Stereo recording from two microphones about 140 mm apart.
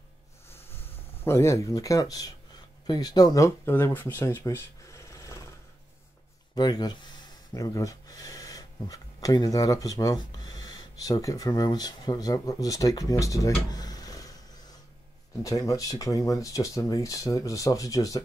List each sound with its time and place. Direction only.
1.2 s speech: 20° left (ahead or behind)
6.5 s speech: 30° left (ahead or behind)
15.4 s speech: 25° left (ahead or behind)